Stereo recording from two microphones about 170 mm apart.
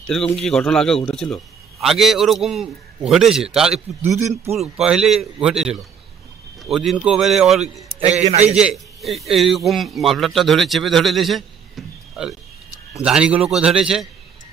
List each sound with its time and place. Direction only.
0.0 s speech: 5° left (ahead or behind)
8.1 s a man's voice: 40° right (ahead or behind)
8.5 s speech: 5° right (ahead or behind)